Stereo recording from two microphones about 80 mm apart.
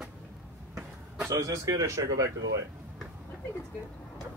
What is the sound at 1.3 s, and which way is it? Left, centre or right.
Speech, right.